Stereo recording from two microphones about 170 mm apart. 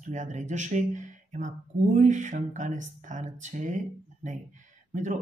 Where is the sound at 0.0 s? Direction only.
45° right (ahead or behind).